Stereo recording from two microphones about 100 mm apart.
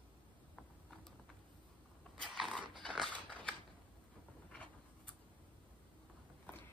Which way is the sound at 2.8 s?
5° left (ahead or behind).